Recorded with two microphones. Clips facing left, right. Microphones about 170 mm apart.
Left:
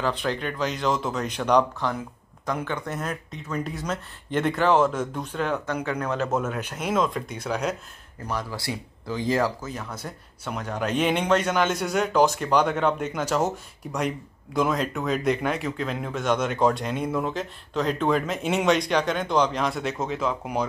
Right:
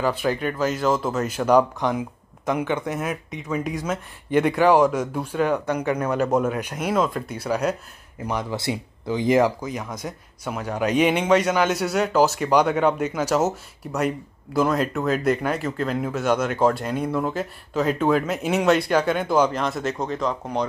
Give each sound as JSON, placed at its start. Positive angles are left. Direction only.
{"t": 0.0, "sound": "speech", "side_deg": -5}
{"t": 1.8, "sound": "speech", "side_deg": -15}
{"t": 8.3, "sound": "speech", "side_deg": -20}